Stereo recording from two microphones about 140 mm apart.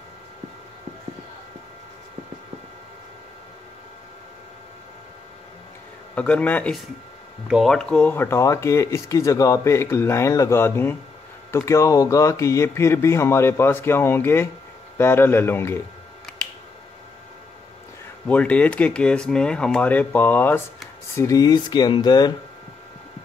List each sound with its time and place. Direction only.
6.1 s speech: 10° left (ahead or behind)
7.4 s speech: centre (ahead or behind); by 15.8 s 15° left (ahead or behind)
18.2 s speech: 10° left (ahead or behind); by 22.3 s 30° left (ahead or behind)